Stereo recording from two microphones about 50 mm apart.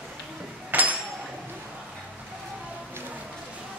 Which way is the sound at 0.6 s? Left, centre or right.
Right.